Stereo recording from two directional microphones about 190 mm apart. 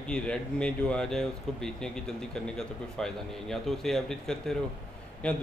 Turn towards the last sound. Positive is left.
turn(degrees=5)  # may be behind; listen again after turning